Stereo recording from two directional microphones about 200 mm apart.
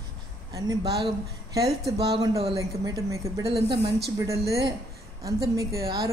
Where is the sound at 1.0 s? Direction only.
15° right (ahead or behind).